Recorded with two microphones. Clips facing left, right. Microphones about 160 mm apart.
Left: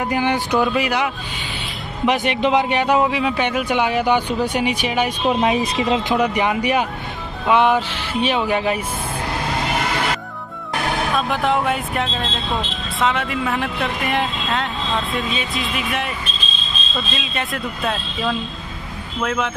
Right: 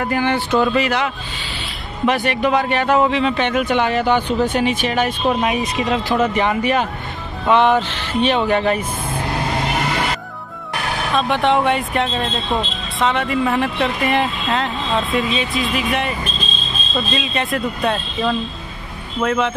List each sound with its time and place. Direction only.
0.0 s a man's voice: 15° left (ahead or behind)
5.4 s speech: 30° left (ahead or behind)
6.3 s a man's voice: 10° left (ahead or behind)
11.1 s speech: 5° left (ahead or behind)